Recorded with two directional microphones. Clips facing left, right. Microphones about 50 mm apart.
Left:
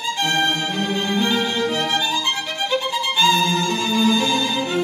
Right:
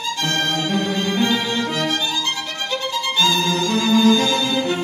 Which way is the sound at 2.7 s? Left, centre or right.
Left.